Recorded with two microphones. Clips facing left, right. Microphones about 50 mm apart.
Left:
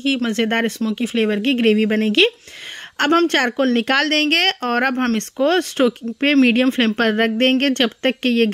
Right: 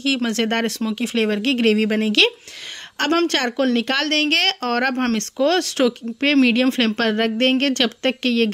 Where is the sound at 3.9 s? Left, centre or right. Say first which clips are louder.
Left 3 dB; left.